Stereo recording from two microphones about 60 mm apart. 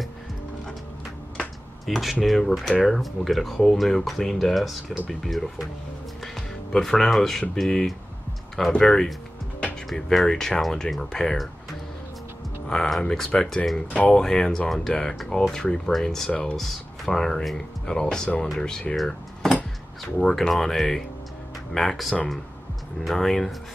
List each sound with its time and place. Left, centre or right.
1.9 s speech: centre
6.2 s music: centre
7.5 s speech: centre
12.6 s speech: centre
16.3 s speech: centre
16.5 s speech: centre
18.9 s cutlery: centre
20.2 s speech: centre